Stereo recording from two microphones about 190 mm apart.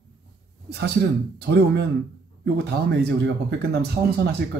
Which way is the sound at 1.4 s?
60° right (ahead or behind).